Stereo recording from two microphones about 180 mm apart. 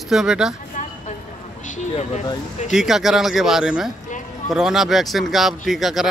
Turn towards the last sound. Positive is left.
turn(degrees=0)  # may be behind; listen again after turning